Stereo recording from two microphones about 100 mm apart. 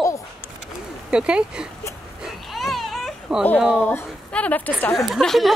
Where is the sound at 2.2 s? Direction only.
Centre (ahead or behind).